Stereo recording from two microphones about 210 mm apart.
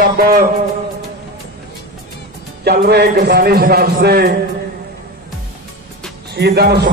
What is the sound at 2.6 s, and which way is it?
A man's voice, 50° right (ahead or behind).